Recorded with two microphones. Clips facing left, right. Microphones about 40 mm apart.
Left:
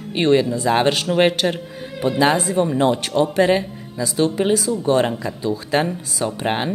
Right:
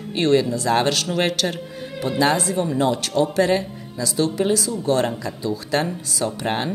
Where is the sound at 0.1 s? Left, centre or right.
Left.